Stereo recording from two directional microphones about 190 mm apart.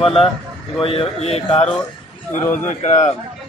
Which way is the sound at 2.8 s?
35° left (ahead or behind).